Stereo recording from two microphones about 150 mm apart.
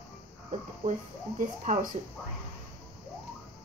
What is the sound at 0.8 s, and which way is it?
Speech, 65° right (ahead or behind).